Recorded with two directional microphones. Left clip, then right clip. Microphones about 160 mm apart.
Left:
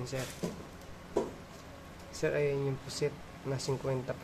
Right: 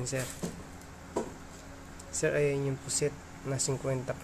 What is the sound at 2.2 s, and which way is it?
Speech, 25° right (ahead or behind).